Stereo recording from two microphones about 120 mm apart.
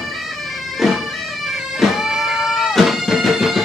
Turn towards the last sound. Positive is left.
turn(degrees=0)  # may be behind; listen again after turning